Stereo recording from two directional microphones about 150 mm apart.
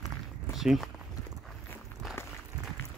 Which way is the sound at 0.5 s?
Centre (ahead or behind).